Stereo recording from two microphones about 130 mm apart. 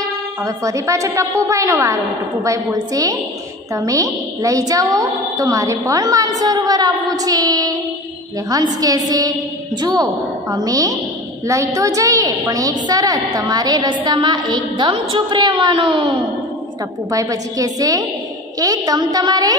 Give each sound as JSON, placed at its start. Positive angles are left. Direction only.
{"t": 0.0, "sound": "a woman's voice", "side_deg": -25}
{"t": 17.1, "sound": "a woman's voice", "side_deg": -25}